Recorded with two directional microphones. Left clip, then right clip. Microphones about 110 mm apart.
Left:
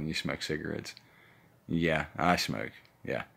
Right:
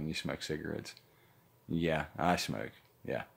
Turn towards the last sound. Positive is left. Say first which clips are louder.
# left 3 dB
turn(degrees=-20)  # may be behind; listen again after turning